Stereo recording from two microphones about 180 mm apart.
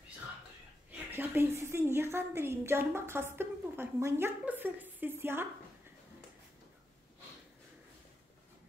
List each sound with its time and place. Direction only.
1.1 s a woman's voice: 10° right (ahead or behind)